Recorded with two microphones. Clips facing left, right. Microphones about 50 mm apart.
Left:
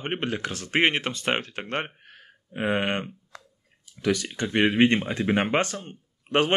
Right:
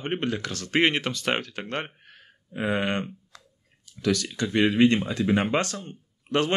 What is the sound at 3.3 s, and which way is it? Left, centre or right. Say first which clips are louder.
Chewing: left 5 dB; left.